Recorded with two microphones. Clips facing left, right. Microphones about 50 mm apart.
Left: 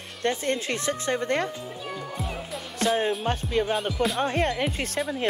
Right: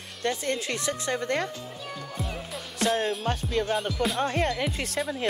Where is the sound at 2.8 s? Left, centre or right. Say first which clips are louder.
Left 1 dB; left.